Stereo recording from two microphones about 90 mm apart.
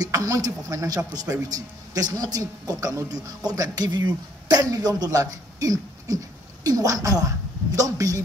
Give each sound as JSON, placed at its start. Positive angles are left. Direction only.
{"t": 0.0, "sound": "a man's voice", "side_deg": -40}